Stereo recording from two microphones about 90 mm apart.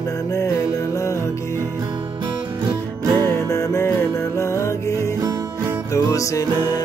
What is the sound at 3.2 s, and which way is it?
Music, 30° left (ahead or behind).